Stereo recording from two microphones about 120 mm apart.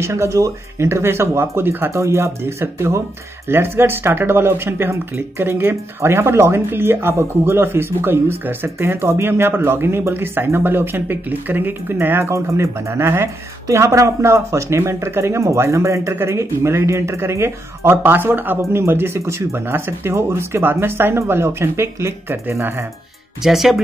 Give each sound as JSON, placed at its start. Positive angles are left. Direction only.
{"t": 0.0, "sound": "speech", "side_deg": -25}
{"t": 23.4, "sound": "speech", "side_deg": 0}